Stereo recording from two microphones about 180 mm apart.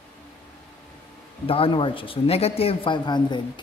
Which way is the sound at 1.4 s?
30° left (ahead or behind).